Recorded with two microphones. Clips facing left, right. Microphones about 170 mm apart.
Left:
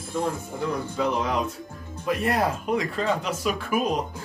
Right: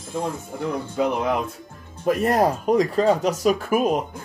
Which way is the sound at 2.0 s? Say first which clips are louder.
Right 5 dB; 45° right (ahead or behind).